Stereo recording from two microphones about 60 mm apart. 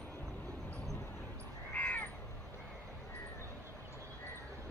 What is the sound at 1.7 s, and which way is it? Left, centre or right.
Crow, left.